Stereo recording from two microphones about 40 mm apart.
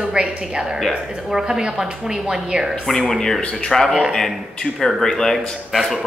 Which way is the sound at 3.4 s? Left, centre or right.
Left.